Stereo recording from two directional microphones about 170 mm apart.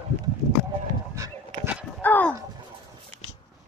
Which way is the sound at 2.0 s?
10° left (ahead or behind).